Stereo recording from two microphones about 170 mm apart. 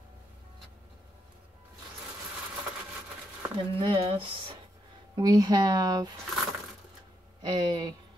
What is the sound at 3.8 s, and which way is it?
Speech, 35° right (ahead or behind).